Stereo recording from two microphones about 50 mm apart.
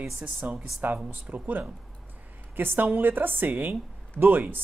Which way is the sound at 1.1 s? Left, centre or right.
Right.